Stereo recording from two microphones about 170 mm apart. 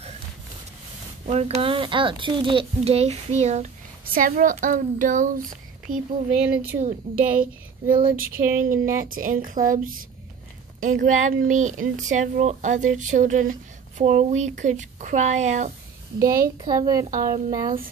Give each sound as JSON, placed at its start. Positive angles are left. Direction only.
{"t": 1.2, "sound": "a child's voice", "side_deg": -40}
{"t": 4.0, "sound": "speech", "side_deg": -55}
{"t": 6.4, "sound": "a woman's voice", "side_deg": -10}
{"t": 6.8, "sound": "speech", "side_deg": -45}
{"t": 8.5, "sound": "speech", "side_deg": -55}
{"t": 16.2, "sound": "a woman's voice", "side_deg": -20}